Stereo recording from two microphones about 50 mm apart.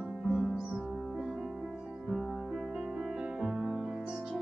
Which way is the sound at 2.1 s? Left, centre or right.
Centre.